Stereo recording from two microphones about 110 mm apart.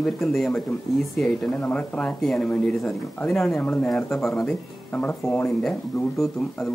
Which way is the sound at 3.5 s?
15° left (ahead or behind).